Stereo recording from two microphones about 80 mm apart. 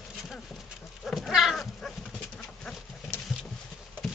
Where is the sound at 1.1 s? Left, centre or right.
Centre.